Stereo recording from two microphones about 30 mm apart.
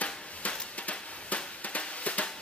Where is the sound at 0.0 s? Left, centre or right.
Left.